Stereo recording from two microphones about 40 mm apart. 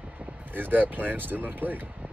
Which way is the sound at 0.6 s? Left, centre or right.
Right.